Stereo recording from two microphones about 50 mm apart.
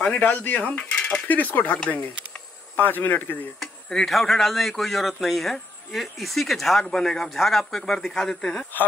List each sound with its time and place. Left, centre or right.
0.1 s speech: left
0.7 s cutlery: left
1.2 s speech: left
1.8 s speech: left
2.7 s speech: left
3.9 s a man's voice: centre